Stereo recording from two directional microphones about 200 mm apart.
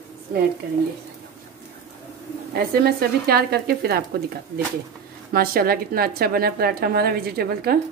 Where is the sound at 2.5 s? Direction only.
50° right (ahead or behind).